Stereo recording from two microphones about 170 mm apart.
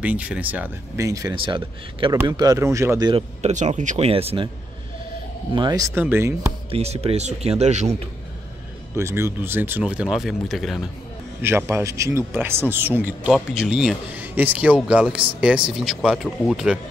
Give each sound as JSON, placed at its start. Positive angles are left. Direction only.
{"t": 0.0, "sound": "speech", "side_deg": -10}
{"t": 1.3, "sound": "speech", "side_deg": -30}
{"t": 3.1, "sound": "speech", "side_deg": -35}
{"t": 4.1, "sound": "speech", "side_deg": -35}
{"t": 5.5, "sound": "speech", "side_deg": -25}
{"t": 6.7, "sound": "speech", "side_deg": -35}
{"t": 8.9, "sound": "speech", "side_deg": -15}
{"t": 11.4, "sound": "speech", "side_deg": -15}